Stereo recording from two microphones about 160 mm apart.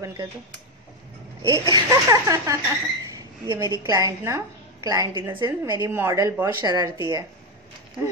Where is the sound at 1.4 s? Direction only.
20° right (ahead or behind).